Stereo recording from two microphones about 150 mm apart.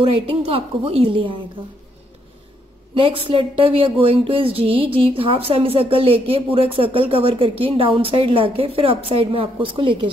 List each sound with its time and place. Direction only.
0.0 s speech: 35° right (ahead or behind)
2.9 s speech: 35° right (ahead or behind)